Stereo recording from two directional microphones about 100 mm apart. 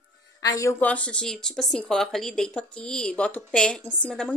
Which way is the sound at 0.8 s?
15° left (ahead or behind).